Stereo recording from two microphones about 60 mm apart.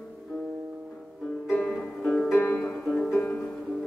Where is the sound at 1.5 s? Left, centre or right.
Centre.